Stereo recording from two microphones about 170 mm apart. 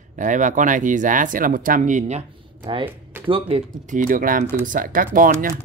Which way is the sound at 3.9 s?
50° right (ahead or behind).